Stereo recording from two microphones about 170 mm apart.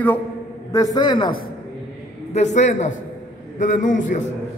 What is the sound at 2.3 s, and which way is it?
A man's voice, 45° left (ahead or behind).